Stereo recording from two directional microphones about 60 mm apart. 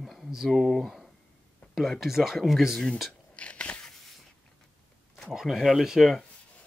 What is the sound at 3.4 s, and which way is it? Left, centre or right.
Biting, centre.